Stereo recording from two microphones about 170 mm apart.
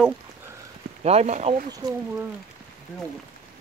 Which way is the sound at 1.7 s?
20° right (ahead or behind).